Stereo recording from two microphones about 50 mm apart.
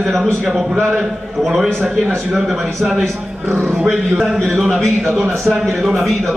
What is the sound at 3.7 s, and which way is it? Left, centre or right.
A man's voice, centre.